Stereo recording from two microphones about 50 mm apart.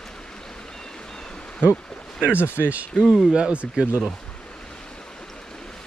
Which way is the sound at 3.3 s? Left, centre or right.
Right.